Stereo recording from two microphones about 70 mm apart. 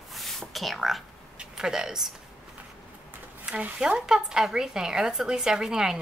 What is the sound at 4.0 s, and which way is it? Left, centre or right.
Speech, centre.